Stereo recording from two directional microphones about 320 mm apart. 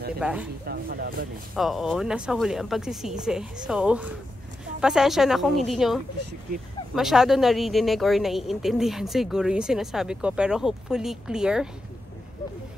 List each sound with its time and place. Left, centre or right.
0.2 s a woman's voice: centre
0.7 s speech: right
1.5 s a woman's voice: centre
7.0 s a woman's voice: centre